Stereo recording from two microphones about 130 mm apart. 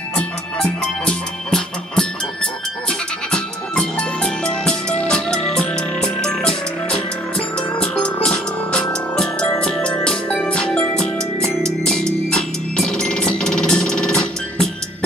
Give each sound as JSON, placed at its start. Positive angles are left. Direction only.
{"t": 0.1, "sound": "music", "side_deg": 5}